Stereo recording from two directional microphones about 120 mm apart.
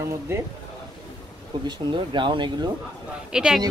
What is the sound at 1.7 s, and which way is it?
Speech, 40° right (ahead or behind).